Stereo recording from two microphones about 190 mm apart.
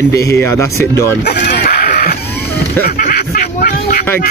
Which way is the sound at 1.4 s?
50° left (ahead or behind).